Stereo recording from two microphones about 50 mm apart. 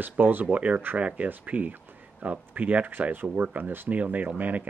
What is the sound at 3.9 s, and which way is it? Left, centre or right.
Speech, right.